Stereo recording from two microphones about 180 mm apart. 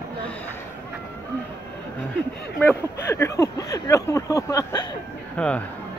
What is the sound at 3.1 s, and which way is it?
Speech, 15° left (ahead or behind).